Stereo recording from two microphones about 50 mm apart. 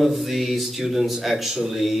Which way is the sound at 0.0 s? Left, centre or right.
Centre.